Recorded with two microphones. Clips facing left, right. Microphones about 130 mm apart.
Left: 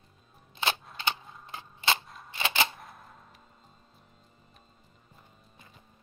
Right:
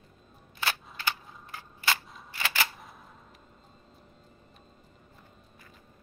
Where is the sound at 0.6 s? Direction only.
20° left (ahead or behind).